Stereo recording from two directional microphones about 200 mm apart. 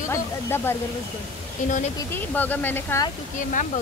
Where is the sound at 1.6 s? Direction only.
40° left (ahead or behind).